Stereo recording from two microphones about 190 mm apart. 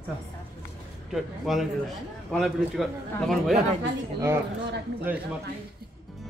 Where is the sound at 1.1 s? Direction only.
Centre (ahead or behind).